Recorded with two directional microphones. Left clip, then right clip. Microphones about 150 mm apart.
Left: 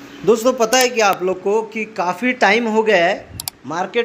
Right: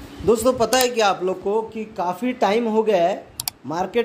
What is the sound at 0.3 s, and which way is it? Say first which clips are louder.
A man's voice: left 3 dB; centre (ahead or behind).